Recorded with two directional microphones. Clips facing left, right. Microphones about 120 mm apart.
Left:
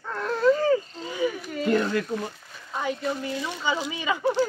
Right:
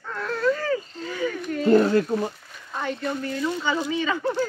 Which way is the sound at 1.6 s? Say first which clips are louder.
Right 6 dB; 35° right (ahead or behind).